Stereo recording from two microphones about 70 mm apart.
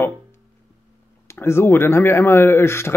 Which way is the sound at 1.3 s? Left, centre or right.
Left.